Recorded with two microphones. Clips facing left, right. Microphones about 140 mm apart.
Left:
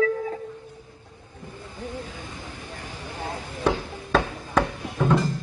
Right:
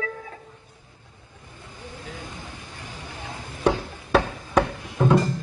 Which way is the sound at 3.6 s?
10° right (ahead or behind).